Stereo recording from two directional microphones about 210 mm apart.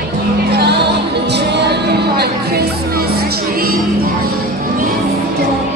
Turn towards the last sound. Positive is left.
turn(degrees=-45)  # may be behind; listen again after turning